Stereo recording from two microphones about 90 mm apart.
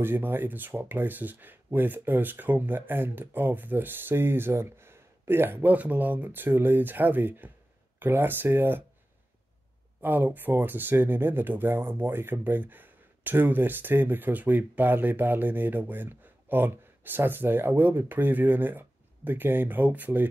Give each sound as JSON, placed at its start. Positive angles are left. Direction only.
{"t": 0.0, "sound": "speech", "side_deg": -25}
{"t": 10.0, "sound": "speech", "side_deg": -20}